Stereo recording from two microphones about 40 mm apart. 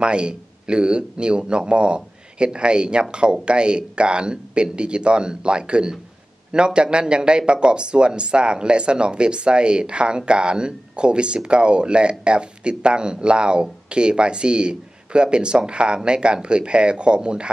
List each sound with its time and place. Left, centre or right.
0.0 s speech: right